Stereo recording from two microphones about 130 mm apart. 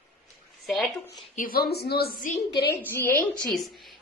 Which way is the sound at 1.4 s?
75° left (ahead or behind).